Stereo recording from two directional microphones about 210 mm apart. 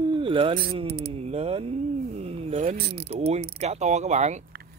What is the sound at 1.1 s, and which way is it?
Speech, 30° right (ahead or behind).